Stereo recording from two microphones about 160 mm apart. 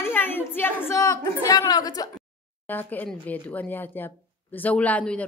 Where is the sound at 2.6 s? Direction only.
10° left (ahead or behind).